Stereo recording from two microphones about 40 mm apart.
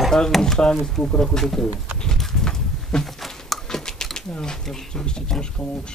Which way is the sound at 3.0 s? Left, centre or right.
Centre.